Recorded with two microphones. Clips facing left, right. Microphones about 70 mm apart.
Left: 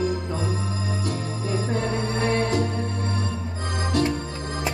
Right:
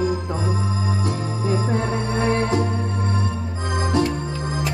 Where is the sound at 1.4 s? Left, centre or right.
Right.